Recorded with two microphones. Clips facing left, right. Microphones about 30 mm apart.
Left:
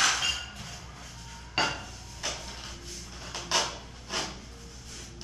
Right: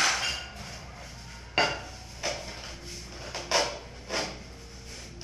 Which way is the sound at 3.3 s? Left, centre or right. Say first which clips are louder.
Right 2 dB; right.